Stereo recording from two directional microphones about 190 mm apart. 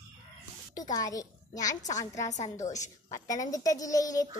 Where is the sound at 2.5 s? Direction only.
15° left (ahead or behind).